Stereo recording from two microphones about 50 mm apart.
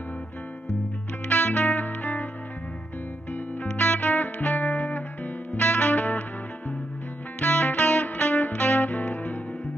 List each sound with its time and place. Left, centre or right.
1.3 s music: left
3.6 s music: left
7.3 s music: left